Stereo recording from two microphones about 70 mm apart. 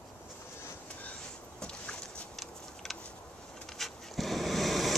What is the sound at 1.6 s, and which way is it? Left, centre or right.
Vehicle, centre.